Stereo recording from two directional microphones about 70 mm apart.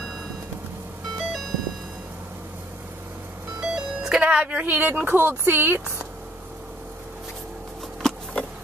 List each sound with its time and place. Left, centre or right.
1.1 s music: centre
3.6 s speech: centre; by 5.9 s right
8.0 s a sound: centre